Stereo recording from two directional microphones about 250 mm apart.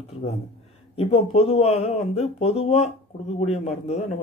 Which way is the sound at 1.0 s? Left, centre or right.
Left.